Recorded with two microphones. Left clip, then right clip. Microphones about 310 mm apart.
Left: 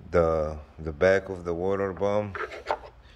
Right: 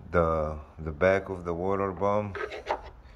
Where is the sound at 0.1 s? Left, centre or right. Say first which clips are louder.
Left 2 dB; centre.